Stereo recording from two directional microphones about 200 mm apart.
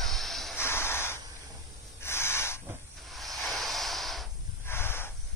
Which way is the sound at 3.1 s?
Centre (ahead or behind).